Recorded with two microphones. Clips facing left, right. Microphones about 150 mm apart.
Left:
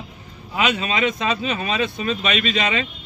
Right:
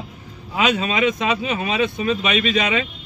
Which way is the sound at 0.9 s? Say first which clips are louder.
Right 2 dB; 15° right (ahead or behind).